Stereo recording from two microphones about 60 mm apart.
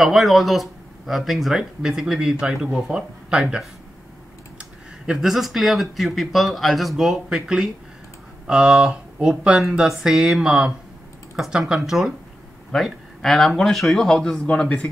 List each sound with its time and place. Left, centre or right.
0.0 s a man's voice: centre
14.3 s speech: centre